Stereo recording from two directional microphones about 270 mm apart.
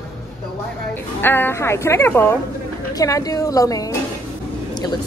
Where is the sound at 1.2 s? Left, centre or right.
Centre.